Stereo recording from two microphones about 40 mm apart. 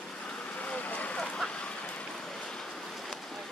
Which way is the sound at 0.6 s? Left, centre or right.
Left.